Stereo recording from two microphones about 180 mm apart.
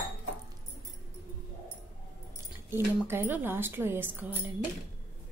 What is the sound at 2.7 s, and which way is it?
A woman's voice, 10° right (ahead or behind).